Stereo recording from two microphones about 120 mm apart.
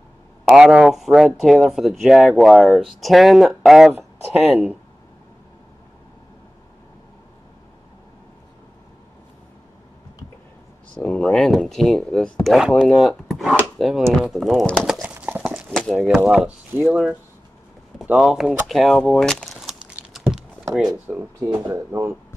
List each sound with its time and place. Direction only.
0.5 s speech: 5° right (ahead or behind)
11.0 s speech: 10° left (ahead or behind)
15.0 s clip-clop: 15° right (ahead or behind)
15.9 s speech: centre (ahead or behind)
20.1 s a sound: 5° right (ahead or behind)
20.9 s speech: 25° right (ahead or behind)